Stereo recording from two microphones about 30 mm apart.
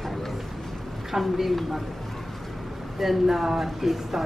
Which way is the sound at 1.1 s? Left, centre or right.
Centre.